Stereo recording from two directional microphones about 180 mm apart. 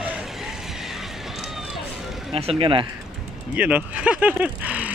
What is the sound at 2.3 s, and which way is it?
Speech, 30° right (ahead or behind).